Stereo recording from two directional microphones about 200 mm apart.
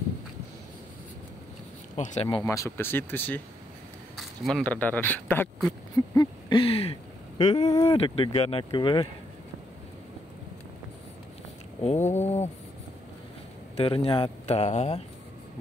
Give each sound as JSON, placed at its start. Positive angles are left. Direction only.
{"t": 2.0, "sound": "speech", "side_deg": 35}
{"t": 2.2, "sound": "speech", "side_deg": 15}
{"t": 5.7, "sound": "speech", "side_deg": 20}
{"t": 7.6, "sound": "speech", "side_deg": 15}
{"t": 8.0, "sound": "speech", "side_deg": 30}
{"t": 11.8, "sound": "speech", "side_deg": 35}
{"t": 13.7, "sound": "speech", "side_deg": 30}